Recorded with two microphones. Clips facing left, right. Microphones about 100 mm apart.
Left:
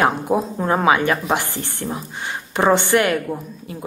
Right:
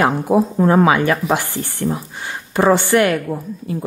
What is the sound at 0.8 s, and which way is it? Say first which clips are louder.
A woman's voice: right 2 dB; 20° left (ahead or behind).